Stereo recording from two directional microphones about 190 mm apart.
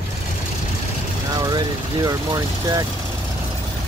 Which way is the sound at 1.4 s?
20° right (ahead or behind).